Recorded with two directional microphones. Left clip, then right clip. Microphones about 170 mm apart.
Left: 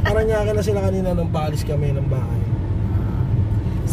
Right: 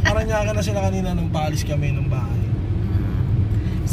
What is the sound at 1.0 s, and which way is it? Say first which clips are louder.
Speech: left 2 dB; 25° left (ahead or behind).